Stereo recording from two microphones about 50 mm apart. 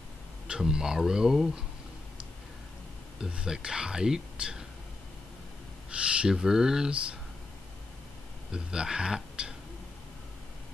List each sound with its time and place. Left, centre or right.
0.5 s speech: centre
3.3 s speech: centre
5.9 s speech: right
8.5 s speech: centre